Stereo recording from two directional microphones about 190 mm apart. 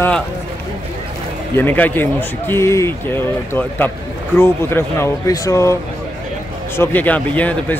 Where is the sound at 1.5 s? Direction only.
10° left (ahead or behind).